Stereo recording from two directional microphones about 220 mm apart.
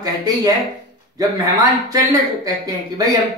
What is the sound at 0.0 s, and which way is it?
Speech, 15° right (ahead or behind).